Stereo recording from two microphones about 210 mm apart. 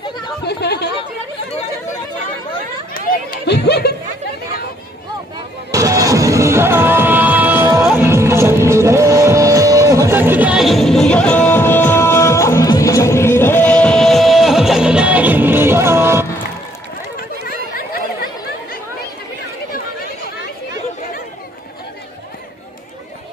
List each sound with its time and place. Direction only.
0.4 s chatter: 50° left (ahead or behind)
3.1 s a sound: 50° left (ahead or behind)
5.7 s music: 15° right (ahead or behind)
17.7 s chatter: 45° left (ahead or behind)